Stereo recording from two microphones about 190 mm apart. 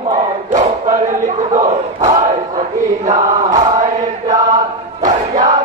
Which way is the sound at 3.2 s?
20° right (ahead or behind).